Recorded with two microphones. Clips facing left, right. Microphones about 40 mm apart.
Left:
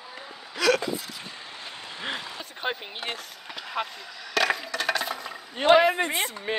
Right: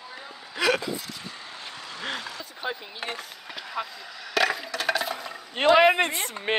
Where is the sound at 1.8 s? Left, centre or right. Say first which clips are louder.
Even; left.